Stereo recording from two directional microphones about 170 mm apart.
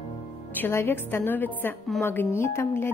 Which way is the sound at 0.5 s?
10° left (ahead or behind).